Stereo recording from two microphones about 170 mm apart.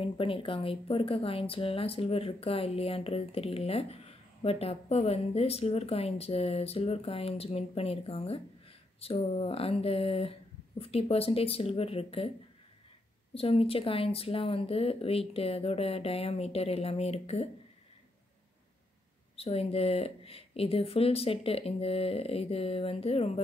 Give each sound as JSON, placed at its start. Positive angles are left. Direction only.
{"t": 0.0, "sound": "a woman's voice", "side_deg": 30}
{"t": 13.3, "sound": "a woman's voice", "side_deg": 35}
{"t": 19.3, "sound": "a woman's voice", "side_deg": 35}